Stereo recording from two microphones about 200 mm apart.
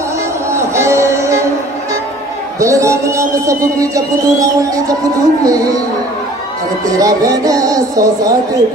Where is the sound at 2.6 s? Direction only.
15° right (ahead or behind).